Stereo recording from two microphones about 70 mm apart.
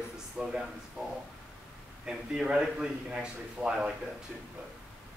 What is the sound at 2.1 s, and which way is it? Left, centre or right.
A man's voice, centre.